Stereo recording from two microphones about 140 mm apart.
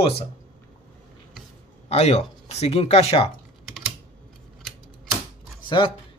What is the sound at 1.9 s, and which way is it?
Speech, 50° left (ahead or behind).